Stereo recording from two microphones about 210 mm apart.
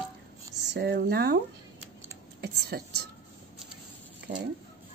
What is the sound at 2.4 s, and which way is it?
Speech, 50° right (ahead or behind).